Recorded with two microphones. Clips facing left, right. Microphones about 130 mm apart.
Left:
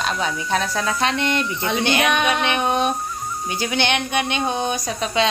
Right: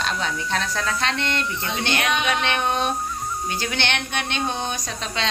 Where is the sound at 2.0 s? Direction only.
55° left (ahead or behind).